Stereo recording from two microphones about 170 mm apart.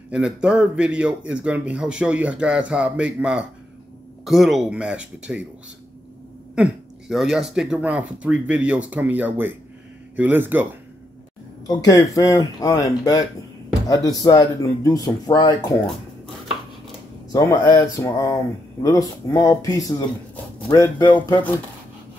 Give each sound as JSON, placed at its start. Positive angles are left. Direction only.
{"t": 0.1, "sound": "a man's voice", "side_deg": -5}
{"t": 6.5, "sound": "a man's voice", "side_deg": -5}
{"t": 11.6, "sound": "speech", "side_deg": 20}
{"t": 17.3, "sound": "speech", "side_deg": 25}